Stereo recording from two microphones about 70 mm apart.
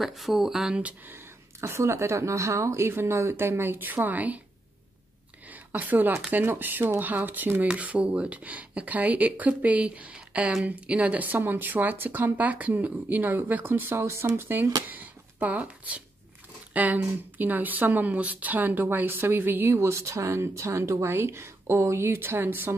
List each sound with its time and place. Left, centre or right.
0.0 s speech: centre
1.6 s speech: right
5.5 s a woman's voice: right